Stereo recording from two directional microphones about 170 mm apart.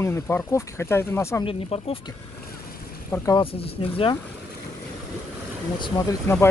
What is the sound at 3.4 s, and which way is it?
Speech, 35° left (ahead or behind).